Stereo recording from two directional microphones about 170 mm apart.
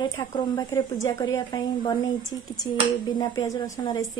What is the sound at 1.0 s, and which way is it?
Speech, 20° left (ahead or behind).